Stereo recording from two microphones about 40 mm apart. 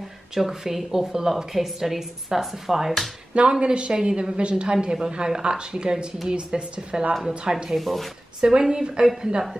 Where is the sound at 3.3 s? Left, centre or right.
Right.